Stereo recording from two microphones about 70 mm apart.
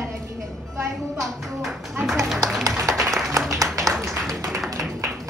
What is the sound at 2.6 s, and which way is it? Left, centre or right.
Applause, right.